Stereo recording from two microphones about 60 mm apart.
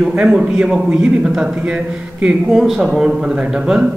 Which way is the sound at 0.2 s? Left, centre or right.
Centre.